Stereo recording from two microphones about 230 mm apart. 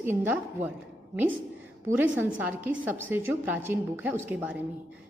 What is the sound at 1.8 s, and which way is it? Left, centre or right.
A woman's voice, centre.